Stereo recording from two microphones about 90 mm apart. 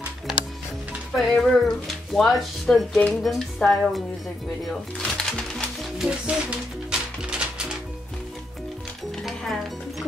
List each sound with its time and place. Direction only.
1.1 s speech: centre (ahead or behind)
5.9 s speech: 10° right (ahead or behind)
6.9 s music: 10° right (ahead or behind)
9.2 s music: centre (ahead or behind)